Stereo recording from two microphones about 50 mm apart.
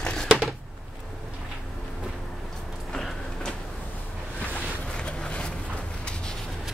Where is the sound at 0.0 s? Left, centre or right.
Centre.